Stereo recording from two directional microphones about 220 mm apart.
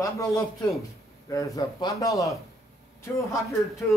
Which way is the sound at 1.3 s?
15° left (ahead or behind).